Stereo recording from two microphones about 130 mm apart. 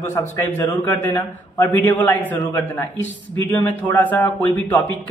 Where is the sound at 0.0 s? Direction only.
20° left (ahead or behind).